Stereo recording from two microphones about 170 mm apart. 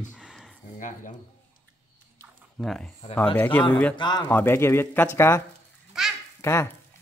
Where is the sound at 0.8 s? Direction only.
50° left (ahead or behind).